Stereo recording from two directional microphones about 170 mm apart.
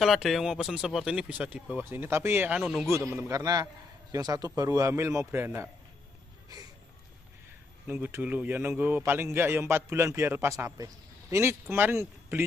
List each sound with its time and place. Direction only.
0.0 s a man's voice: centre (ahead or behind)
2.9 s a man's voice: 15° right (ahead or behind)
7.8 s a man's voice: 10° right (ahead or behind)